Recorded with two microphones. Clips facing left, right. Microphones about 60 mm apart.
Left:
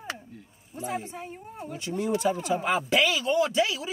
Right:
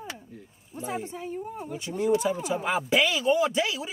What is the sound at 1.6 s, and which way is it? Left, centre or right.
Speech, centre.